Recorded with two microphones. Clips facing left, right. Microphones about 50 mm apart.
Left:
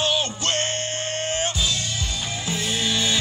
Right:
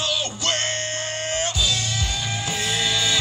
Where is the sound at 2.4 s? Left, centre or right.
Right.